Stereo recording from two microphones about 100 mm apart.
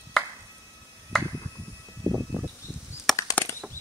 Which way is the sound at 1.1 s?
5° left (ahead or behind).